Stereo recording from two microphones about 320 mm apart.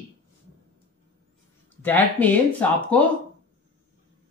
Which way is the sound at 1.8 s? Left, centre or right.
Centre.